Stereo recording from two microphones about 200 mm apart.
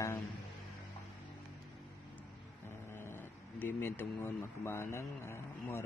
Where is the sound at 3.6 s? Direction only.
10° left (ahead or behind).